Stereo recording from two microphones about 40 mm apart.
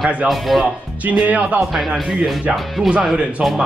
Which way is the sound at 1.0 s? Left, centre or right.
Right.